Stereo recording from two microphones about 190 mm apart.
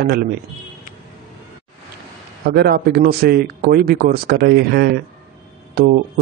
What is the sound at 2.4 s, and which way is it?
Speech, 55° right (ahead or behind).